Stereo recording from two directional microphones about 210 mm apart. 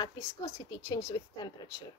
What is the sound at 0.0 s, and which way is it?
Speech, 20° left (ahead or behind).